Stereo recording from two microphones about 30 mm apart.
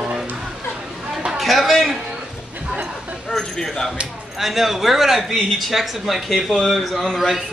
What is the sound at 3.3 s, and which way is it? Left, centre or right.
Speech, centre.